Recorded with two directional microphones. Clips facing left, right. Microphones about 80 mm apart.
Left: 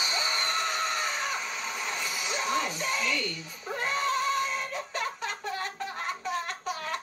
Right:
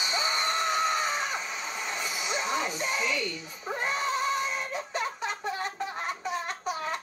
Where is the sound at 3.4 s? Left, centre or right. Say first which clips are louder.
Right 1 dB; right.